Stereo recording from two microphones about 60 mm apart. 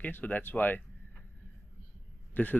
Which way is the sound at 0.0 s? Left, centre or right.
Left.